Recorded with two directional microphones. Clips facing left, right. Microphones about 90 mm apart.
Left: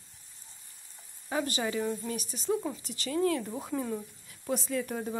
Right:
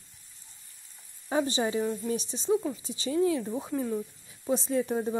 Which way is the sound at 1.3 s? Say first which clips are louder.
Right 4 dB; 25° right (ahead or behind).